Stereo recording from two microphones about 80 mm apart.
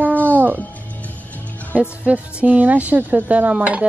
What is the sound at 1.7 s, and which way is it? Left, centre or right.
Speech, centre.